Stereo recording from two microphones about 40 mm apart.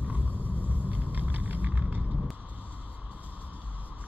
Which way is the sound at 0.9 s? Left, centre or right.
Right.